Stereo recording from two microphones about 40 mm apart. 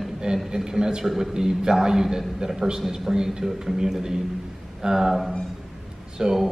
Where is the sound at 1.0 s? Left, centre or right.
Centre.